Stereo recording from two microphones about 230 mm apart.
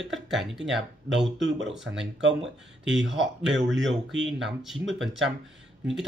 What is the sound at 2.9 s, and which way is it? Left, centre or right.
Speech, right.